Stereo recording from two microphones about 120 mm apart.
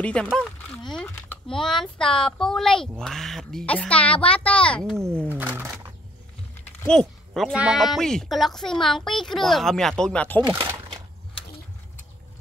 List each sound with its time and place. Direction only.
0.0 s a woman's voice: 10° left (ahead or behind)
5.2 s speech: 15° right (ahead or behind)
6.9 s speech: 5° left (ahead or behind)
7.5 s speech: 5° right (ahead or behind); by 10.4 s 10° left (ahead or behind)